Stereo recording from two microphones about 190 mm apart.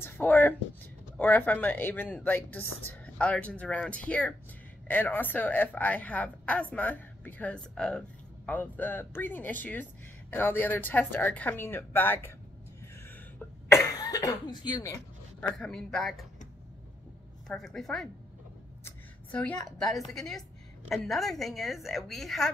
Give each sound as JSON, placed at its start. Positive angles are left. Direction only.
{"t": 0.0, "sound": "a woman's voice", "side_deg": 10}
{"t": 13.9, "sound": "speech", "side_deg": 20}
{"t": 15.6, "sound": "a woman's voice", "side_deg": 5}
{"t": 17.5, "sound": "a woman's voice", "side_deg": 0}
{"t": 18.9, "sound": "a sound", "side_deg": 10}
{"t": 20.0, "sound": "a woman's voice", "side_deg": 0}